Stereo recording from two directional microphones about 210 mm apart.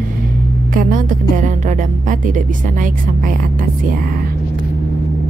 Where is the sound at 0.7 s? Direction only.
40° right (ahead or behind).